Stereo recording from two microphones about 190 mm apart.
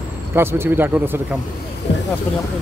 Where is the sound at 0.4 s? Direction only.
10° right (ahead or behind).